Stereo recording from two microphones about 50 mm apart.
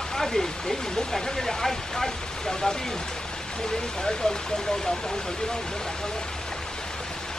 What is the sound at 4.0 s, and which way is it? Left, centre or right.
Speech, centre.